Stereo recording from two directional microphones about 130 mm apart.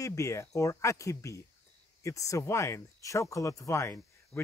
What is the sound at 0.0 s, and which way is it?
Speech, 25° left (ahead or behind).